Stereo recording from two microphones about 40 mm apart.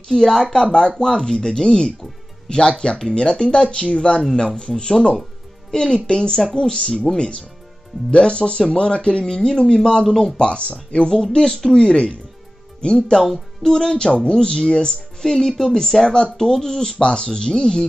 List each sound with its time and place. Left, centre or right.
0.1 s speech: centre
4.2 s a woman's voice: centre
8.1 s speech: left
10.3 s speech: left
11.3 s speech: centre
11.8 s speech: left
13.2 s speech: centre
13.7 s speech: centre